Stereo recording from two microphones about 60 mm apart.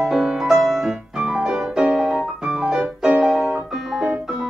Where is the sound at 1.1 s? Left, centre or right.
Centre.